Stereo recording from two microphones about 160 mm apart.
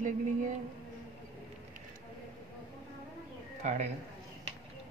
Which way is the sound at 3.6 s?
50° right (ahead or behind).